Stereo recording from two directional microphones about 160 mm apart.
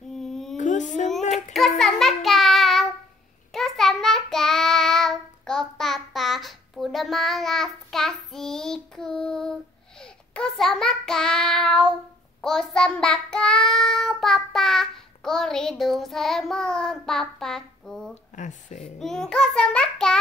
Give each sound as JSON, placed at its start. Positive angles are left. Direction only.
{"t": 0.1, "sound": "humming", "side_deg": 0}
{"t": 0.6, "sound": "a sound", "side_deg": 50}
{"t": 1.3, "sound": "child singing", "side_deg": 0}
{"t": 18.3, "sound": "speech", "side_deg": 50}
{"t": 18.9, "sound": "child singing", "side_deg": 5}